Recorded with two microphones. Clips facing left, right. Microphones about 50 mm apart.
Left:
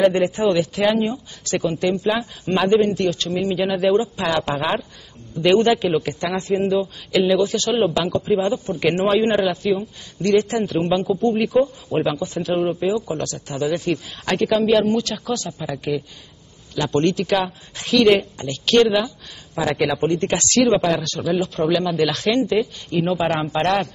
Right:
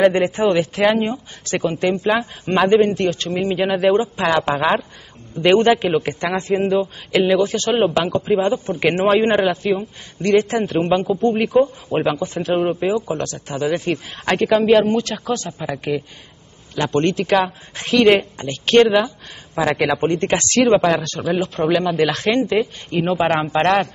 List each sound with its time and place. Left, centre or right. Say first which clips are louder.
0.0 s speech: right 2 dB; right